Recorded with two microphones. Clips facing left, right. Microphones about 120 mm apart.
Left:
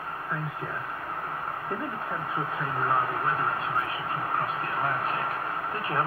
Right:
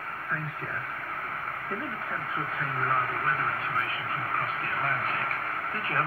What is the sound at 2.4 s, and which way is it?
Speech, 20° left (ahead or behind).